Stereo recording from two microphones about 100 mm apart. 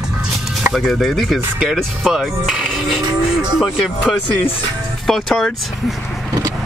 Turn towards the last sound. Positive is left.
turn(degrees=0)  # may be behind; listen again after turning